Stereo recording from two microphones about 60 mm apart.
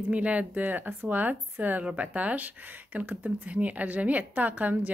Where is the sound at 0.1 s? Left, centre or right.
Right.